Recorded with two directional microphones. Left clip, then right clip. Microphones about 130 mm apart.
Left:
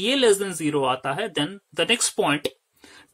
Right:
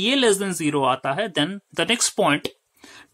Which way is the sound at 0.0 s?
35° right (ahead or behind).